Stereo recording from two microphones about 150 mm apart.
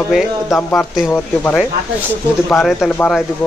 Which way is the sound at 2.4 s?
Centre (ahead or behind).